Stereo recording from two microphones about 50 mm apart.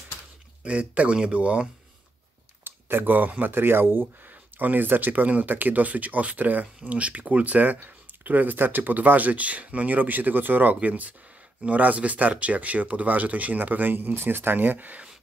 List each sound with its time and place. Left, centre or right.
0.7 s speech: right
2.6 s speech: right